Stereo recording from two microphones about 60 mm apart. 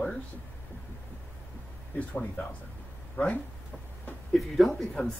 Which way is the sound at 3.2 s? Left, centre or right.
Left.